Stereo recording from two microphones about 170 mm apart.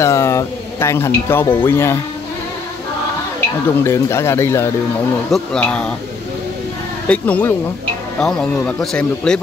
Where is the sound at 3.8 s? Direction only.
15° left (ahead or behind).